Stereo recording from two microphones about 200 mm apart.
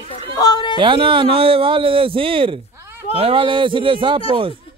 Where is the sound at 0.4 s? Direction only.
20° left (ahead or behind).